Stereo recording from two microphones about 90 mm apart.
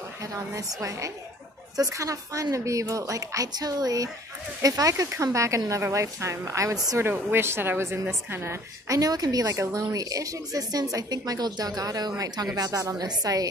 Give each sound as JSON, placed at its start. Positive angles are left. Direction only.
{"t": 0.2, "sound": "a woman's voice", "side_deg": -35}
{"t": 7.0, "sound": "a woman's voice", "side_deg": -25}
{"t": 8.8, "sound": "a woman's voice", "side_deg": -40}